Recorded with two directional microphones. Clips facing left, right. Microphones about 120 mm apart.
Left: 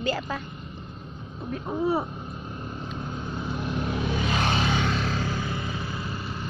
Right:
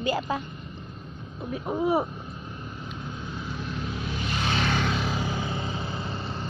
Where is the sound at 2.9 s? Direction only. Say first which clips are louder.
Left 2 dB; 25° left (ahead or behind).